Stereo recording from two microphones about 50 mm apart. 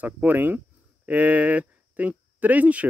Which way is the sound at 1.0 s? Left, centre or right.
Right.